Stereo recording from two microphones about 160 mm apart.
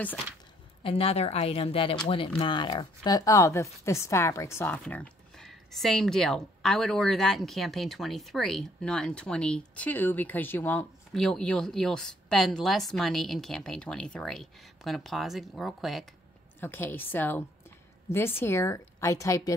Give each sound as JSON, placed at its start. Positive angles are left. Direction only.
{"t": 0.8, "sound": "speech", "side_deg": 35}
{"t": 4.8, "sound": "a woman's voice", "side_deg": 5}
{"t": 16.5, "sound": "a woman's voice", "side_deg": 15}